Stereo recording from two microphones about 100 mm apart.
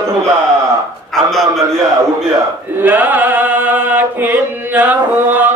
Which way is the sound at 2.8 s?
20° right (ahead or behind).